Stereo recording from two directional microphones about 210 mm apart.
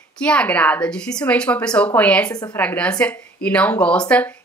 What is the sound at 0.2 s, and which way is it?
Speech, 5° left (ahead or behind).